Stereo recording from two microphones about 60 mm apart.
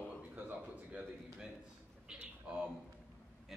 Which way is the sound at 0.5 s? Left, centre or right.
Right.